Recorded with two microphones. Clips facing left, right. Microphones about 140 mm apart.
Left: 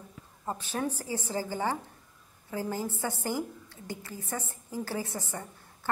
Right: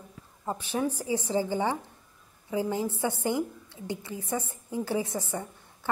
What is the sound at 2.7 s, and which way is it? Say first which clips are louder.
A woman's voice: right 4 dB; 15° right (ahead or behind).